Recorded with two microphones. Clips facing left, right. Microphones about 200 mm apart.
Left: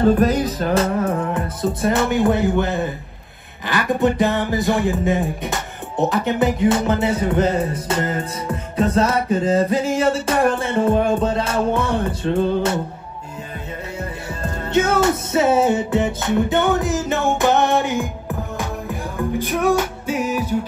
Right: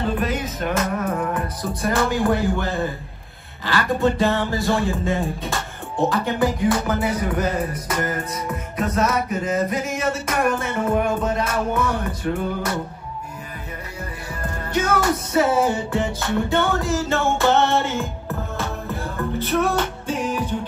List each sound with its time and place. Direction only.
0.0 s speech: 40° left (ahead or behind)
14.4 s music: 25° left (ahead or behind); by 20.5 s 5° left (ahead or behind)